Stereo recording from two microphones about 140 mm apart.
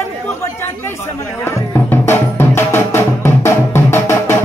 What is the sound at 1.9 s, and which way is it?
Music, 15° left (ahead or behind).